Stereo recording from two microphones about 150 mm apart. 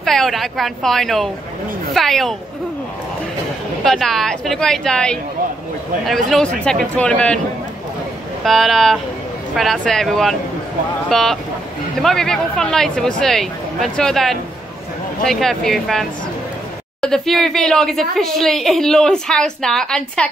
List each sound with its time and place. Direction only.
0.0 s a woman's voice: centre (ahead or behind)
3.8 s a woman's voice: 5° left (ahead or behind)
8.5 s a woman's voice: centre (ahead or behind)